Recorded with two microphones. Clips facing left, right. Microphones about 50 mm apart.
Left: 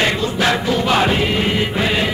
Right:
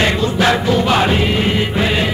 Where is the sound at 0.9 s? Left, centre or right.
Centre.